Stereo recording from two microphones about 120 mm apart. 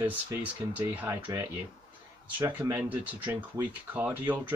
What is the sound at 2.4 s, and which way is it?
Speech, 15° right (ahead or behind).